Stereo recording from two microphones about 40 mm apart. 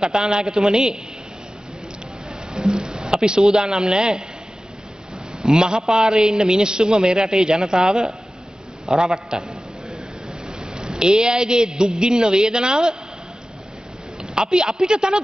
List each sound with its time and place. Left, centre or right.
0.0 s a man's voice: right
2.5 s speech: centre
5.4 s a man's voice: centre
8.8 s a sound: centre
10.6 s a man's voice: centre
14.2 s a man's voice: centre